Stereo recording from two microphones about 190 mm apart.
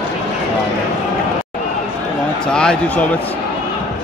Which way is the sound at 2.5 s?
5° left (ahead or behind).